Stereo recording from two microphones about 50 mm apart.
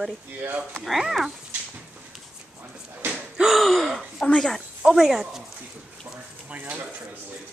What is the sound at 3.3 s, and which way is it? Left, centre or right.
Gasp, centre.